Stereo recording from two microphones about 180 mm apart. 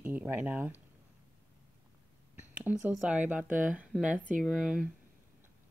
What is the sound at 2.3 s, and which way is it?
Speech, 10° right (ahead or behind).